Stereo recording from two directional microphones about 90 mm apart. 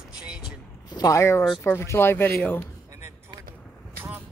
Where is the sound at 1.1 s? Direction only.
30° left (ahead or behind).